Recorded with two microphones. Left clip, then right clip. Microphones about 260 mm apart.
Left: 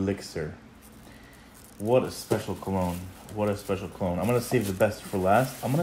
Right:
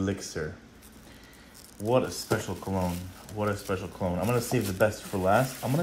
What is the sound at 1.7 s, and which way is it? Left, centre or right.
Speech, right.